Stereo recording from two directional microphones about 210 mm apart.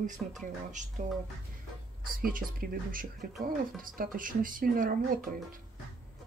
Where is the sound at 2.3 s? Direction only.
40° right (ahead or behind).